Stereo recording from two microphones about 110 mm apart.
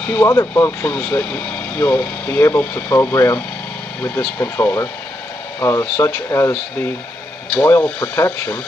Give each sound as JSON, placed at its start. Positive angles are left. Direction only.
{"t": 0.0, "sound": "speech", "side_deg": 15}
{"t": 0.3, "sound": "speech", "side_deg": 25}
{"t": 7.6, "sound": "speech", "side_deg": 15}